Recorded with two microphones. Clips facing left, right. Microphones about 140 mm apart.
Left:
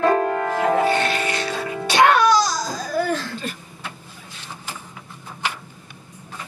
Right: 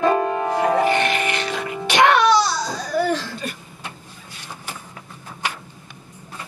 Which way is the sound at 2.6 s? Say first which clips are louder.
Right 1 dB; 10° left (ahead or behind).